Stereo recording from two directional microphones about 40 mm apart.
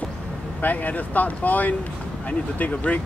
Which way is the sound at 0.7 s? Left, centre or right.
Left.